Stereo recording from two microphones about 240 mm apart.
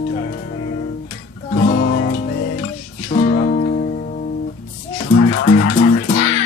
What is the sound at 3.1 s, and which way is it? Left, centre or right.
Music, left.